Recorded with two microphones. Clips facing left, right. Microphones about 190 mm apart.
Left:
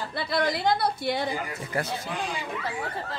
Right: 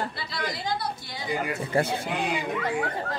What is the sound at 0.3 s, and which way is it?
Speech, 65° left (ahead or behind).